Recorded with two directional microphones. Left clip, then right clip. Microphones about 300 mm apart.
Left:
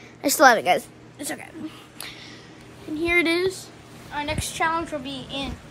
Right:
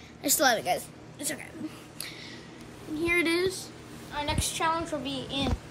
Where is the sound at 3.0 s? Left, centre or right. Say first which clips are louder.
Left 5 dB; centre.